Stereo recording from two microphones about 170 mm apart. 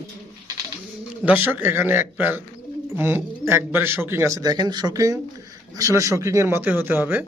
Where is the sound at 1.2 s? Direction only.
10° right (ahead or behind).